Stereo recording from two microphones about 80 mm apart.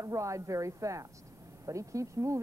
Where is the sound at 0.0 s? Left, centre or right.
Right.